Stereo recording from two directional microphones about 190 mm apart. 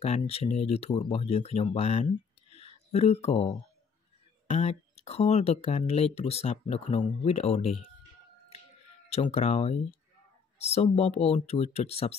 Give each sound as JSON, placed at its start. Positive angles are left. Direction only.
{"t": 0.0, "sound": "speech", "side_deg": 35}
{"t": 9.1, "sound": "speech", "side_deg": 35}